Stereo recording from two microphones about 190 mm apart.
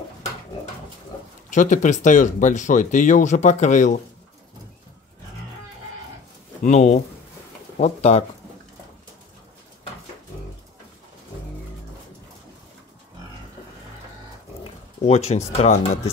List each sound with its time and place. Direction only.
1.5 s speech: 40° left (ahead or behind)
6.6 s speech: 35° left (ahead or behind)
14.6 s speech: 35° left (ahead or behind)